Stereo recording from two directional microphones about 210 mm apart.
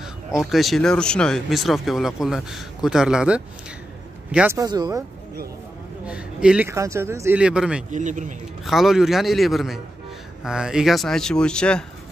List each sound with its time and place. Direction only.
0.3 s speech: centre (ahead or behind); by 5.0 s 20° right (ahead or behind)
6.0 s speech: 5° right (ahead or behind)
7.9 s speech: 35° right (ahead or behind)
8.6 s speech: centre (ahead or behind)